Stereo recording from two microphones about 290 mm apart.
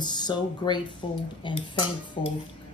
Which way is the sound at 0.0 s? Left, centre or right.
Centre.